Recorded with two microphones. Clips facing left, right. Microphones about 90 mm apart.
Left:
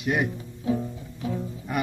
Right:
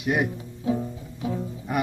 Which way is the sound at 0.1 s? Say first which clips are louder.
Right 1 dB; 15° right (ahead or behind).